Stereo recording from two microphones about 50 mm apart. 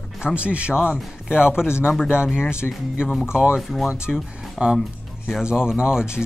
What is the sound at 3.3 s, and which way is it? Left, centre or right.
Speech, centre.